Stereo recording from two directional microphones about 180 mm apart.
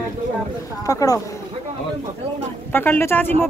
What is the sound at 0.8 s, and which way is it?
Speech, 20° left (ahead or behind).